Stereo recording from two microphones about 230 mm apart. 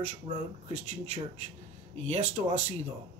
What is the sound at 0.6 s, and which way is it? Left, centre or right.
Speech, right.